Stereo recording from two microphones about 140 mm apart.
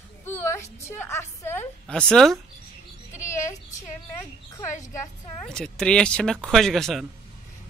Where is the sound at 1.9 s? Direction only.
5° left (ahead or behind).